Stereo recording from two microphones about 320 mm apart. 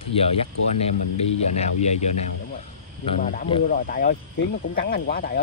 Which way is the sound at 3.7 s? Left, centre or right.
Left.